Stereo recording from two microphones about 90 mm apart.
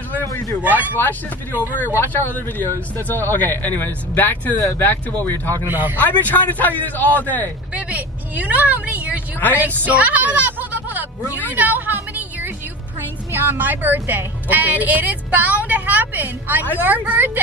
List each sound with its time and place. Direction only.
0.6 s a woman's voice: 20° right (ahead or behind)
2.0 s speech: 20° left (ahead or behind)
5.7 s a woman's voice: 20° right (ahead or behind)
5.9 s speech: 20° left (ahead or behind)
7.7 s a woman's voice: 15° right (ahead or behind)
11.5 s a sound: 20° right (ahead or behind)
13.3 s a woman's voice: 25° right (ahead or behind)